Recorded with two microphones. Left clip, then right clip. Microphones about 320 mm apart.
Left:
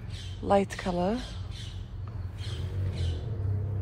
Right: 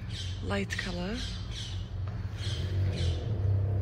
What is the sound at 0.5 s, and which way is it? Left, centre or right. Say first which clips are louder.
Speech: left 9 dB; centre.